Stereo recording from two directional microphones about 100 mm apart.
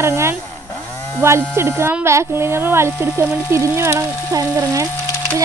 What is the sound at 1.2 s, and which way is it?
Speech, 25° right (ahead or behind).